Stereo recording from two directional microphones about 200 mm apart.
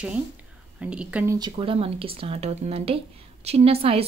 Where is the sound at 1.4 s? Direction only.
25° right (ahead or behind).